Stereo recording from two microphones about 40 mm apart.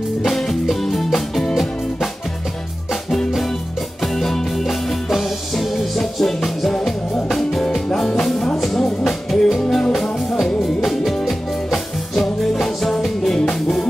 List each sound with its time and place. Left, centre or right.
0.3 s music: centre
3.1 s music: centre
4.6 s music: centre
5.9 s music: centre